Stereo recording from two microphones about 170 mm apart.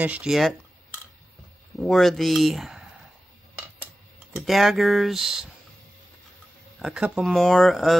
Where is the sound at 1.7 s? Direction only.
Centre (ahead or behind).